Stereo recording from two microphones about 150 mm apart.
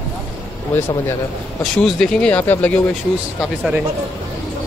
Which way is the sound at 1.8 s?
5° left (ahead or behind).